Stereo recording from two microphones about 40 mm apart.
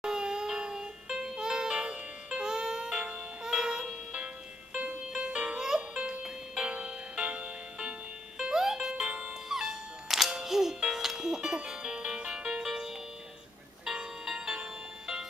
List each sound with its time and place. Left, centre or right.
0.0 s music: centre
8.4 s music: centre
9.0 s music: right
9.5 s music: centre